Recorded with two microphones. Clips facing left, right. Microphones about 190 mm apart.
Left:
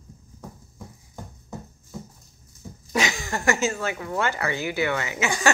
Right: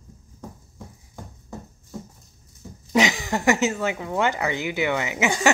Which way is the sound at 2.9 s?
15° right (ahead or behind).